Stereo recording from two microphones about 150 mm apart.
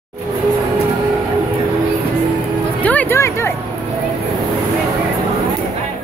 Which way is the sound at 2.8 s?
10° left (ahead or behind).